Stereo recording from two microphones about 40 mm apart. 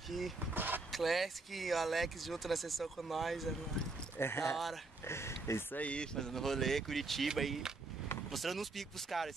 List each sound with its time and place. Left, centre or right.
0.1 s speech: centre
0.6 s vehicle: right
0.9 s speech: centre
4.2 s speech: left
5.8 s speech: left
6.1 s speech: centre